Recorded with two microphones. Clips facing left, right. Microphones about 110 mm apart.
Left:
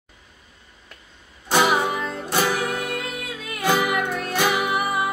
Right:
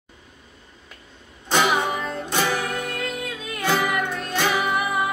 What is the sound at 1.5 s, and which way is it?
Music, 10° left (ahead or behind).